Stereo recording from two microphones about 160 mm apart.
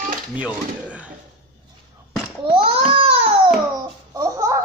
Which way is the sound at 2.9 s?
35° right (ahead or behind).